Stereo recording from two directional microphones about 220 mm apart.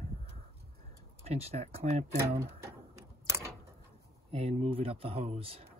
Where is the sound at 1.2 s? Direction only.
25° right (ahead or behind).